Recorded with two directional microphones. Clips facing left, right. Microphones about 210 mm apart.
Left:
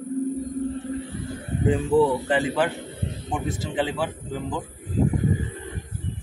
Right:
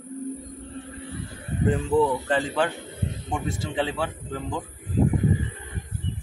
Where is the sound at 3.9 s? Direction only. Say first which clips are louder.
Left 1 dB; 10° left (ahead or behind).